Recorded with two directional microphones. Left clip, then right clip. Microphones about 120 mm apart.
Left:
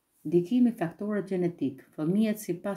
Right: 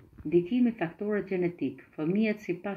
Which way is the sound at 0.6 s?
35° left (ahead or behind).